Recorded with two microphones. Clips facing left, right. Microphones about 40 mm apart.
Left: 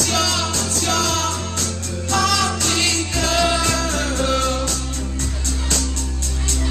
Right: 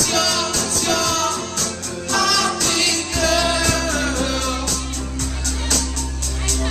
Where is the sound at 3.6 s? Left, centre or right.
Left.